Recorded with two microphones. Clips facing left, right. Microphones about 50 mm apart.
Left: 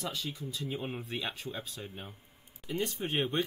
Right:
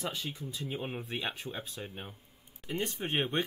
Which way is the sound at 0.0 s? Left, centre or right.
Centre.